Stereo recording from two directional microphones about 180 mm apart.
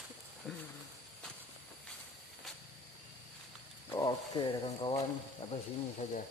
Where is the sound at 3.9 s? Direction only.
20° left (ahead or behind).